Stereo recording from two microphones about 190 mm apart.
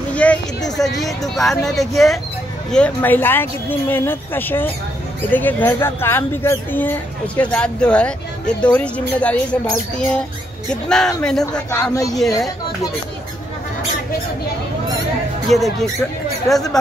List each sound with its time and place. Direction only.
0.1 s a sound: 5° left (ahead or behind)
0.7 s speech: centre (ahead or behind); by 12.2 s 15° left (ahead or behind)
15.5 s speech: 35° right (ahead or behind)
16.4 s speech: centre (ahead or behind)